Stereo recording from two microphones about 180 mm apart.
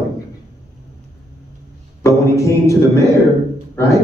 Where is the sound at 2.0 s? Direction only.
15° left (ahead or behind).